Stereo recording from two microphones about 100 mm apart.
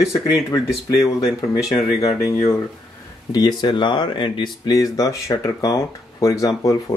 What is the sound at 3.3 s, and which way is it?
Speech, 45° left (ahead or behind).